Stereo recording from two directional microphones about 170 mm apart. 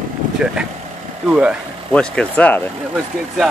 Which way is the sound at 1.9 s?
10° left (ahead or behind).